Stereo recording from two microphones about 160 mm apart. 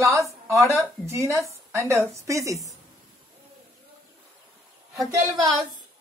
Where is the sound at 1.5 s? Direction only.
20° right (ahead or behind).